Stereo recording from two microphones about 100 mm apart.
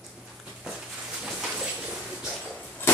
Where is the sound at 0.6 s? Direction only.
10° right (ahead or behind).